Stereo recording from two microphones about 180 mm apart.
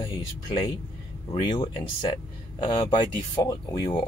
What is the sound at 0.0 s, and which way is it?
Speech, 25° left (ahead or behind).